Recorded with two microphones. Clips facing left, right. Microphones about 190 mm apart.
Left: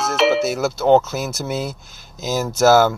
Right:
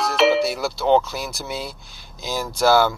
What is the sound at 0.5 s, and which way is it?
Speech, 45° left (ahead or behind).